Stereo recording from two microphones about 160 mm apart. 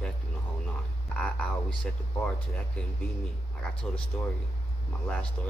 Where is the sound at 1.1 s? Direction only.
5° left (ahead or behind).